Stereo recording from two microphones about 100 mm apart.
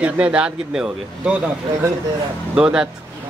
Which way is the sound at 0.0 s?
10° right (ahead or behind).